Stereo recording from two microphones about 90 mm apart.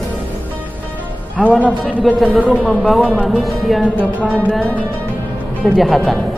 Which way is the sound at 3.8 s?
10° left (ahead or behind).